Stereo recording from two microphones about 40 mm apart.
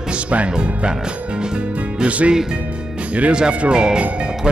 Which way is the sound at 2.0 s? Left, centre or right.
Right.